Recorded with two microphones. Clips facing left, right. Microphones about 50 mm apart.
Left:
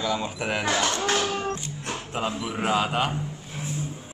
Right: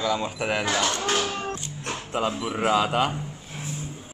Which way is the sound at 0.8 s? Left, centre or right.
Left.